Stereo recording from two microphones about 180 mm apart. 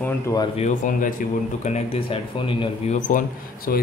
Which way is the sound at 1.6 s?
35° left (ahead or behind).